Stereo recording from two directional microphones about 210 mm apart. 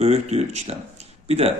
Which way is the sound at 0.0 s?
30° right (ahead or behind).